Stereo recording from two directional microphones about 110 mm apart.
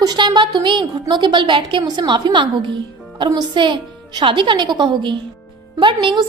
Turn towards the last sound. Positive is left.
turn(degrees=-45)  # may be behind; listen again after turning